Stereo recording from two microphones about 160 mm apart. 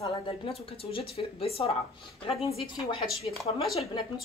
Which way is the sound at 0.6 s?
35° left (ahead or behind).